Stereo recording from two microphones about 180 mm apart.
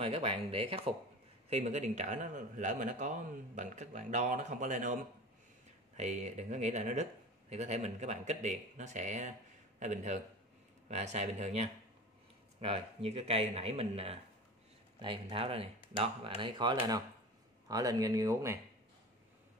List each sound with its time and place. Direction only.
0.0 s a man's voice: 30° right (ahead or behind)
5.9 s speech: 40° right (ahead or behind); by 18.6 s 15° right (ahead or behind)